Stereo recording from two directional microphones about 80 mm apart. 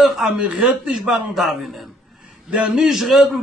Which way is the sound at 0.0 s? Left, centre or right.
Centre.